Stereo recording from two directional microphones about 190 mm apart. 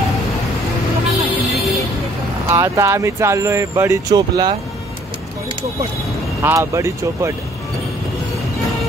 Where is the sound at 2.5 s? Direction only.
15° right (ahead or behind).